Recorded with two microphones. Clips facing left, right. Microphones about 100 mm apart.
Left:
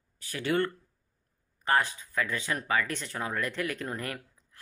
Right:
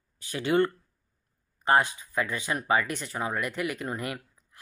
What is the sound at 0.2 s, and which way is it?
Speech, 20° right (ahead or behind).